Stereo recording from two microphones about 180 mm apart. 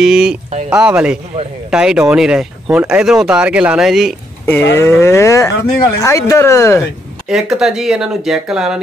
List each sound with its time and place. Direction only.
0.0 s speech: 5° right (ahead or behind)
4.5 s speech: 10° left (ahead or behind)
7.2 s speech: 5° right (ahead or behind)